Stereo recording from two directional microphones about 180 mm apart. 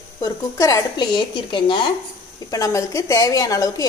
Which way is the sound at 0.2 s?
20° left (ahead or behind).